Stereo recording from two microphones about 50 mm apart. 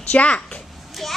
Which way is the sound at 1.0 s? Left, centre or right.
Centre.